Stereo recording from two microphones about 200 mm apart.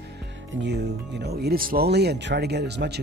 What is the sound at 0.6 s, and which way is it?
Speech, 55° right (ahead or behind).